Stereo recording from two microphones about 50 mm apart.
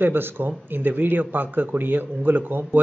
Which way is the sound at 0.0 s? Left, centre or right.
Right.